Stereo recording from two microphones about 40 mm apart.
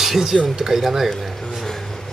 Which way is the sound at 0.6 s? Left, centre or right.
Centre.